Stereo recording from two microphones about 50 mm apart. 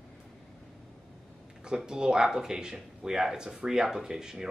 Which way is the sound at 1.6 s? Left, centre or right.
Centre.